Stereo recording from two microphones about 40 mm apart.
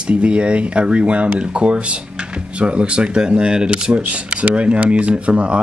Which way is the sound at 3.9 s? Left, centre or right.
Right.